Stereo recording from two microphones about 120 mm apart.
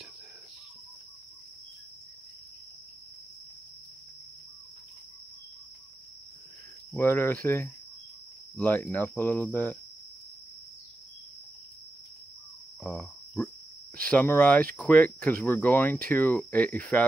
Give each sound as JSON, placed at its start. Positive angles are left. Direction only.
{"t": 6.9, "sound": "speech", "side_deg": 15}
{"t": 13.9, "sound": "speech", "side_deg": 10}